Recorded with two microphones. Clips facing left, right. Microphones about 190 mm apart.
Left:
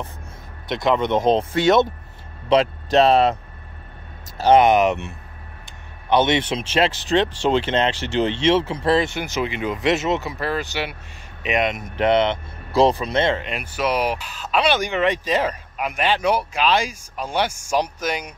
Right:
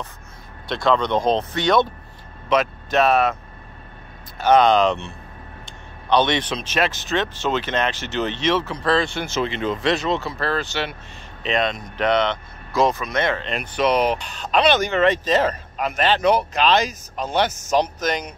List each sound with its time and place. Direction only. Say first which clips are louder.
0.7 s speech: even; 20° left (ahead or behind)
4.4 s speech: left 1 dB; 25° left (ahead or behind)
13.4 s speech: right 3 dB; 10° left (ahead or behind)